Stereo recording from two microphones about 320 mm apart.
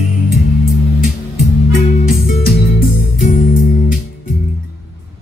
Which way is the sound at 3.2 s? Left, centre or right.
Left.